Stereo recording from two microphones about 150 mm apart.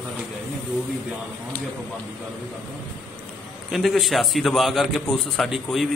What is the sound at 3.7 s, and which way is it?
A man's voice, centre (ahead or behind).